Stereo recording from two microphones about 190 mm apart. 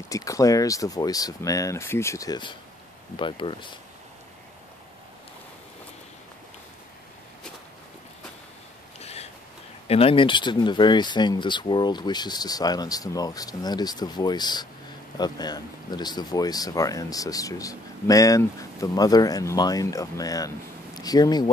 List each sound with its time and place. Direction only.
0.1 s speech: 15° left (ahead or behind)
9.0 s a sound: 35° left (ahead or behind)
9.8 s speech: 30° left (ahead or behind)